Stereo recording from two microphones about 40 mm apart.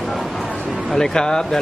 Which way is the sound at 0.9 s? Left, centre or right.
Centre.